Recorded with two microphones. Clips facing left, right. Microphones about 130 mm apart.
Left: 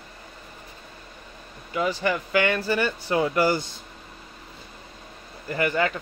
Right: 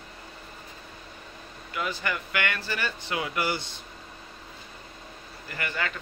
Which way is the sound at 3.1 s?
35° left (ahead or behind).